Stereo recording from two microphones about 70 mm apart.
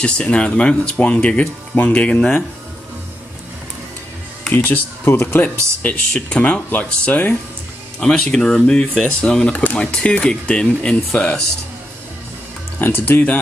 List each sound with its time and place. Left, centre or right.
0.0 s speech: centre
4.6 s speech: left
5.9 s speech: centre
8.0 s speech: centre
12.7 s speech: left